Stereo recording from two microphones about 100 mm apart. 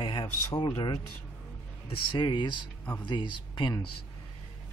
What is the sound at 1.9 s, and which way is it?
Speech, 50° left (ahead or behind).